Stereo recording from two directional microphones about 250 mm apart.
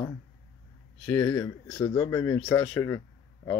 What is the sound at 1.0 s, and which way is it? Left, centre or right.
Speech, centre.